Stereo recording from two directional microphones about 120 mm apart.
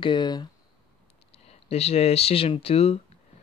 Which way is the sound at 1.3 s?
60° left (ahead or behind).